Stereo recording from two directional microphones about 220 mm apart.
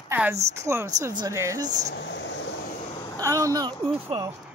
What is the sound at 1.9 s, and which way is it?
Speech, 55° left (ahead or behind).